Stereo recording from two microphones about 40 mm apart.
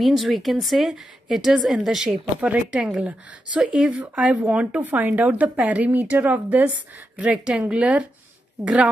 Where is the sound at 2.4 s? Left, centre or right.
Right.